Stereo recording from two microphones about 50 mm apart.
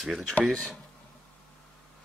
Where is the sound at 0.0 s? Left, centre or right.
Centre.